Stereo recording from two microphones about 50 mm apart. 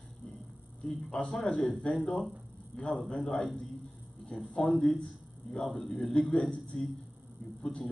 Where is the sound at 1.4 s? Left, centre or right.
Centre.